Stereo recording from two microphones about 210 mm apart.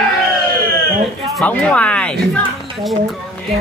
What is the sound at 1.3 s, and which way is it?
Speech, 5° left (ahead or behind).